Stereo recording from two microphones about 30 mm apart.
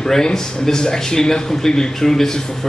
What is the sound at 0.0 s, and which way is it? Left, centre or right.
Speech, centre.